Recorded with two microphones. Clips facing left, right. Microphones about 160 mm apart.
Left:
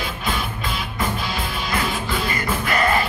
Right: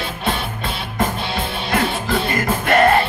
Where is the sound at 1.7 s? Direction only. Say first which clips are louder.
Right 5 dB; 50° right (ahead or behind).